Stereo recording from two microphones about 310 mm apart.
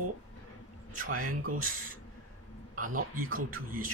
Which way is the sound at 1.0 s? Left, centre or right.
Right.